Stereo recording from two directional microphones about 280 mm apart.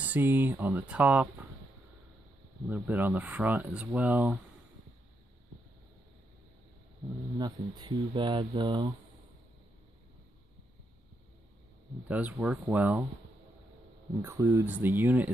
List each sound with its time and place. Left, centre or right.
0.0 s speech: centre
2.7 s speech: centre
7.3 s speech: centre
12.1 s speech: centre
14.2 s speech: centre